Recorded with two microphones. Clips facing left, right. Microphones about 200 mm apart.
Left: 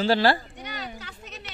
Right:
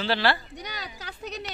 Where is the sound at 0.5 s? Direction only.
40° right (ahead or behind).